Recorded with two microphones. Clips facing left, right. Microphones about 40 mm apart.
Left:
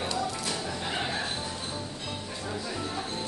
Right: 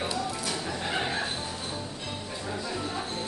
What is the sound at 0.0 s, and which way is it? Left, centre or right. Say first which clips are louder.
Music: even; centre.